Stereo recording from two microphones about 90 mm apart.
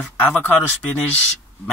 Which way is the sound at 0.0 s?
15° left (ahead or behind).